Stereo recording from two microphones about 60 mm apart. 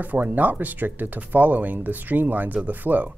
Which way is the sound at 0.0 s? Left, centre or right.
Right.